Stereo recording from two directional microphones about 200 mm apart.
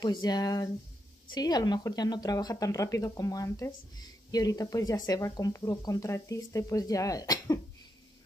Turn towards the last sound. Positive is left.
turn(degrees=20)  # may be behind; listen again after turning